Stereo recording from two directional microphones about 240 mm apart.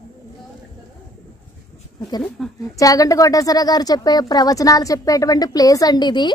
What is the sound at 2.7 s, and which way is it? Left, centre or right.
A child's voice, centre.